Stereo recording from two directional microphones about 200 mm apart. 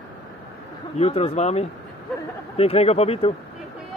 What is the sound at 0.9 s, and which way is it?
Speech, 30° left (ahead or behind).